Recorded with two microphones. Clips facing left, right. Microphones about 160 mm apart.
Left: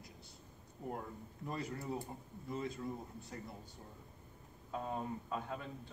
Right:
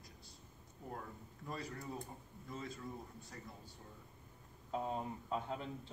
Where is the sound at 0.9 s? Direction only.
25° left (ahead or behind).